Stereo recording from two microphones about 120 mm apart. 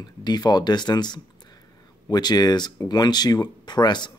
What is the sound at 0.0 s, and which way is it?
Speech, 35° left (ahead or behind).